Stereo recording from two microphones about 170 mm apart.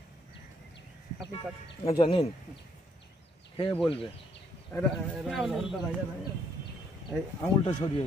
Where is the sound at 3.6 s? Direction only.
30° left (ahead or behind).